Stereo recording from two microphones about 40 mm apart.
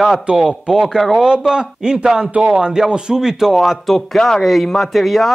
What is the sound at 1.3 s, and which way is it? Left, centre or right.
Speech, right.